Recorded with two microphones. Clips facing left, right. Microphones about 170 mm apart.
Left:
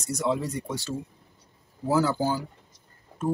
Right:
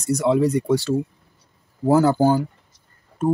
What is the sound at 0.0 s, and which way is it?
Speech, 70° right (ahead or behind).